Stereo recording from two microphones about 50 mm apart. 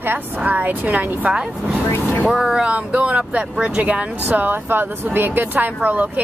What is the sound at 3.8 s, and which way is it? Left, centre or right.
Speech, right.